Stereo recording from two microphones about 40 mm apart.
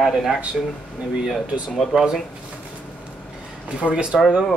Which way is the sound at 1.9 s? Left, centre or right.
Centre.